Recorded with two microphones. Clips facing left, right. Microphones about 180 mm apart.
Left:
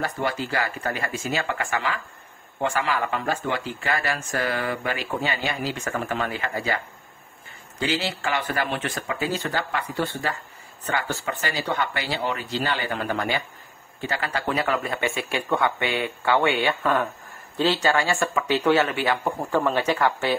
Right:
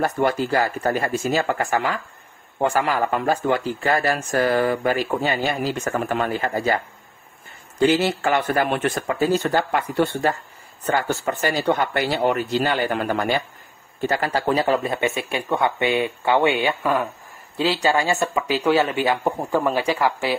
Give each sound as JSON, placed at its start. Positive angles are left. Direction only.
{"t": 0.0, "sound": "speech", "side_deg": -45}
{"t": 7.9, "sound": "speech", "side_deg": -50}